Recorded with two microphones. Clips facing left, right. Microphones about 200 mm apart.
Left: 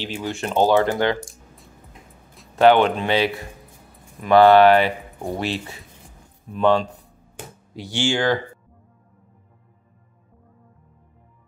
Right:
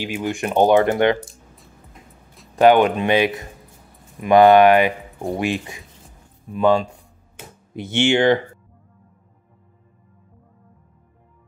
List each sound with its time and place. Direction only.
0.0 s speech: 15° right (ahead or behind)
2.5 s speech: 15° right (ahead or behind)
7.7 s speech: 20° right (ahead or behind)